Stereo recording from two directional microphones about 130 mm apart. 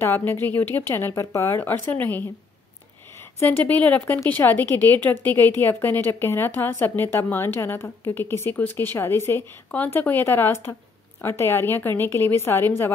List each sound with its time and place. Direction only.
0.0 s a woman's voice: 15° left (ahead or behind)
3.3 s a woman's voice: 15° left (ahead or behind)